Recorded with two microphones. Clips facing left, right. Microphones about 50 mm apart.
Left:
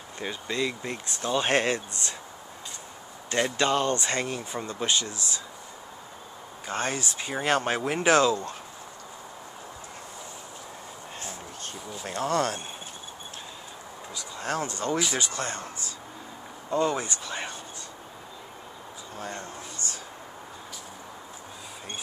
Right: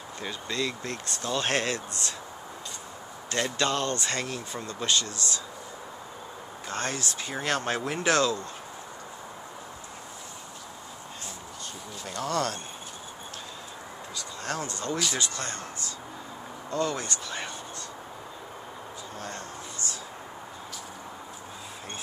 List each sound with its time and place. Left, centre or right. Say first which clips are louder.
0.2 s speech: left 2 dB; centre
3.3 s speech: left 3 dB; left
6.7 s speech: left 2 dB; left
12.0 s speech: left 3 dB; left
14.1 s speech: left 3 dB; centre
14.7 s speech: left 3 dB; left
16.7 s speech: left 3 dB; centre
19.1 s a sound: left 3 dB; centre